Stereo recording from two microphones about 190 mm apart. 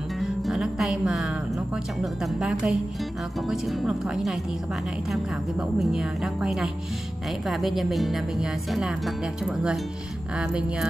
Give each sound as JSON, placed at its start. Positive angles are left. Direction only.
{"t": 0.2, "sound": "speech", "side_deg": 0}